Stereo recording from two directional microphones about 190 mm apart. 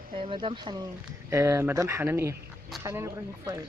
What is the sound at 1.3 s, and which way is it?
Speech, 15° right (ahead or behind).